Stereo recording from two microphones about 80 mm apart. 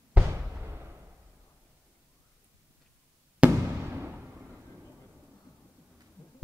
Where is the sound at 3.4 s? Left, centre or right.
Centre.